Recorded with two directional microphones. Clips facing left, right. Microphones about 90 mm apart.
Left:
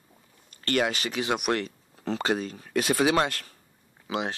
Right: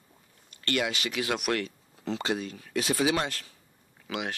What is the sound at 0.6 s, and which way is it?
Speech, 45° left (ahead or behind).